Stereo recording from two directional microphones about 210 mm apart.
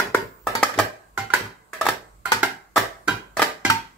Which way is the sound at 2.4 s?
Centre (ahead or behind).